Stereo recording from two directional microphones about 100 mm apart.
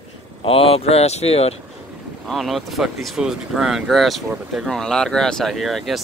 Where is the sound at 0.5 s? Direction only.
75° left (ahead or behind); by 1.5 s 90° left.